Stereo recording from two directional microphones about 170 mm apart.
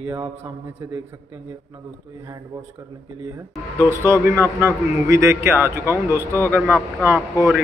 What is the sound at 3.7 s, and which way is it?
A man's voice, 15° right (ahead or behind).